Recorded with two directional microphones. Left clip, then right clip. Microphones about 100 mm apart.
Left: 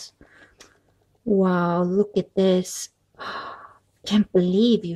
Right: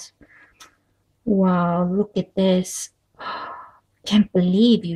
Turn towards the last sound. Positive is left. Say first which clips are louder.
# right 1 dB
turn(degrees=25)  # may be behind; listen again after turning